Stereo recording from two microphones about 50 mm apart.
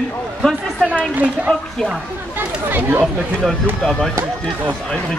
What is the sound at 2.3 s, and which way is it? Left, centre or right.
Speech, right.